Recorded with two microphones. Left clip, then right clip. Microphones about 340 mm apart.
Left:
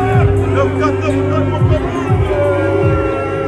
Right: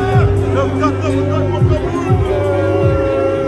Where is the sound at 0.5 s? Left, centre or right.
Right.